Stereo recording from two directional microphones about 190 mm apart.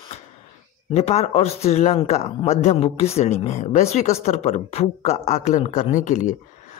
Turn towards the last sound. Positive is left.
turn(degrees=40)  # may be behind; listen again after turning